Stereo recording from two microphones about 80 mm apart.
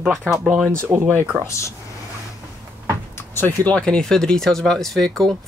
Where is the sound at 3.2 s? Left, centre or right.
Left.